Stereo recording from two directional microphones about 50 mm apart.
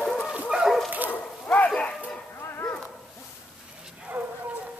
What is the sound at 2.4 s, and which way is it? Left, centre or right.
Bow-wow, left.